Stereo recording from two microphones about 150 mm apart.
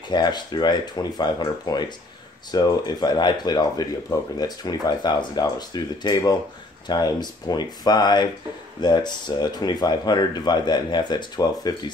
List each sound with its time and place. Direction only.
0.1 s speech: 30° left (ahead or behind)